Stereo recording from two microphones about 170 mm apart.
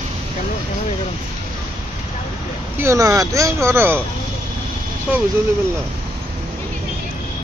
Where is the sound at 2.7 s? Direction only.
15° right (ahead or behind).